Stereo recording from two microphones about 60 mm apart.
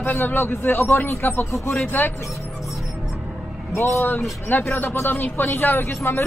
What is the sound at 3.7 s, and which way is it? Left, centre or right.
Speech, left.